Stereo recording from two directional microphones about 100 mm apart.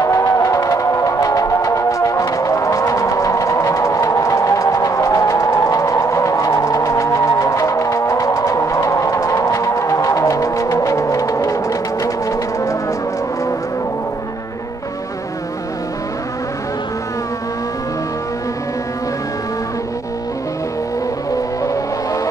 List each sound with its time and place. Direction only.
0.0 s music: 30° left (ahead or behind)